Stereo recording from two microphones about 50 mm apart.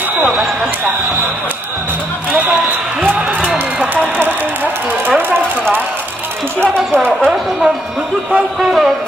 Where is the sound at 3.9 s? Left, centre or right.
Right.